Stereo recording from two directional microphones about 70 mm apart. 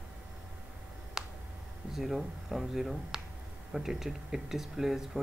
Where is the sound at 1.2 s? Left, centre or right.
Centre.